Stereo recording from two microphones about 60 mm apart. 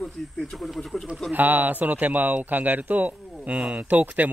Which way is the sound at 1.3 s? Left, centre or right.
Right.